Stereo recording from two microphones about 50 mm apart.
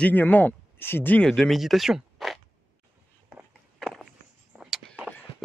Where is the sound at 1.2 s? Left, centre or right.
Centre.